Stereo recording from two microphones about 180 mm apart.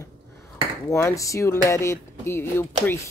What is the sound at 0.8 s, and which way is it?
Speech, 15° left (ahead or behind).